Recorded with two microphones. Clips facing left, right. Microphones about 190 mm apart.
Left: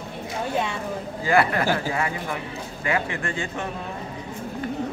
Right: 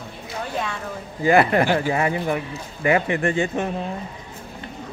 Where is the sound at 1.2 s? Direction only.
20° right (ahead or behind).